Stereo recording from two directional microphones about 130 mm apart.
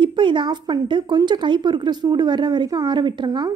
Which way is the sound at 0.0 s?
40° right (ahead or behind).